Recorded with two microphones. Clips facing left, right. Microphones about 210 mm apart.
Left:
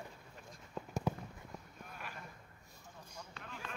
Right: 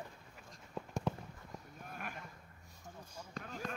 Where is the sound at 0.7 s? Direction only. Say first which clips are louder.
Even; centre (ahead or behind).